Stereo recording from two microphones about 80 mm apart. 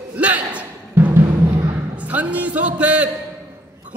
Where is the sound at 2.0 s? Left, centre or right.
Centre.